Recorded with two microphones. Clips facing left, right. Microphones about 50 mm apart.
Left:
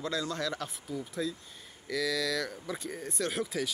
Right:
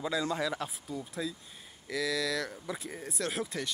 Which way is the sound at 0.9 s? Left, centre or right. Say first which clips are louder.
Left 5 dB; centre.